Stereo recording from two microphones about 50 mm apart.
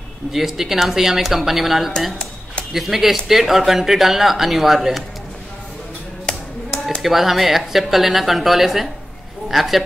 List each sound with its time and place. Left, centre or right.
0.3 s speech: centre
6.3 s clapping: left
7.0 s speech: centre